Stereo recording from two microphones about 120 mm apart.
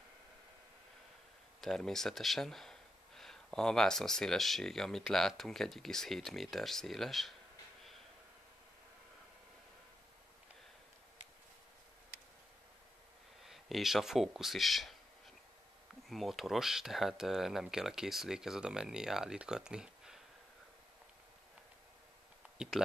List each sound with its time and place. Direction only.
1.6 s speech: centre (ahead or behind)
13.4 s speech: centre (ahead or behind)
16.1 s speech: centre (ahead or behind)